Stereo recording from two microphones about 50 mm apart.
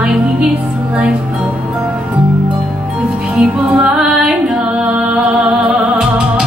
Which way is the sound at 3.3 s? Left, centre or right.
Centre.